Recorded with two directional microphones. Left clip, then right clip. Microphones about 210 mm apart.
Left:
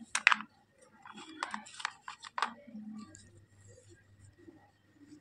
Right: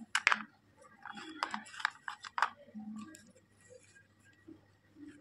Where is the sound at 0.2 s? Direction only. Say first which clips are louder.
Left 5 dB; 20° left (ahead or behind).